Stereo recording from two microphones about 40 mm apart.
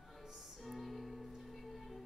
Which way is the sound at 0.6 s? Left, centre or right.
Centre.